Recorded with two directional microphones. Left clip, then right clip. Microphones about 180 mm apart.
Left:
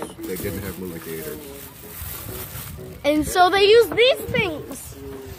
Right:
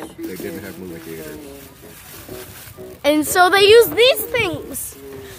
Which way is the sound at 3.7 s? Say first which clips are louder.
Right 4 dB; 40° right (ahead or behind).